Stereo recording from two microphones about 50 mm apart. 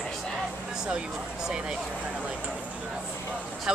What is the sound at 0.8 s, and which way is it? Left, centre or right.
Speech, centre.